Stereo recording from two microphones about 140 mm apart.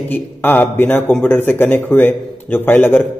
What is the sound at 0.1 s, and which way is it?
A man's voice, 15° left (ahead or behind).